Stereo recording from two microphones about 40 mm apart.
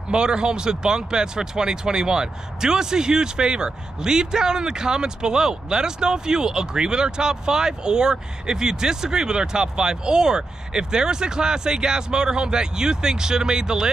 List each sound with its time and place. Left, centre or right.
0.1 s speech: right